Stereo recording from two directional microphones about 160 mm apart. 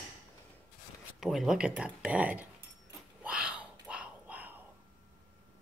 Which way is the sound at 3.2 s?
5° right (ahead or behind).